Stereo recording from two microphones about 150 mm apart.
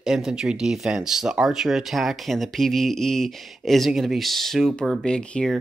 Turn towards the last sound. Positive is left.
turn(degrees=5)  # may be behind; listen again after turning